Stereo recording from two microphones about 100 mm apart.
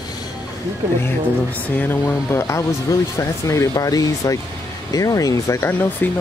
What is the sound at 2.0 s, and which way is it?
Speech, 30° left (ahead or behind).